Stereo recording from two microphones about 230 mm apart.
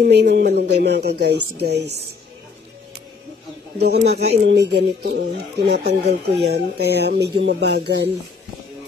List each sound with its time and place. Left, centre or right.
0.0 s speech: right
3.7 s speech: right